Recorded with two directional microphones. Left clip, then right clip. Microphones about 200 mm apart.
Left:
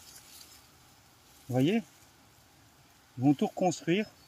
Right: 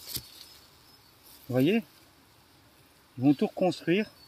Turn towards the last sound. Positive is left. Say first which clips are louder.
# right 2 dB
turn(degrees=-10)  # may be behind; listen again after turning